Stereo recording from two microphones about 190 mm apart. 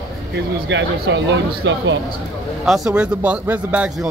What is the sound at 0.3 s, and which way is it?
Speech, 65° right (ahead or behind).